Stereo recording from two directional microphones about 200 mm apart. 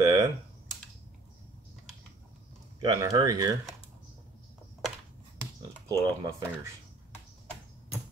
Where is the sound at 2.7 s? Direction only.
20° right (ahead or behind).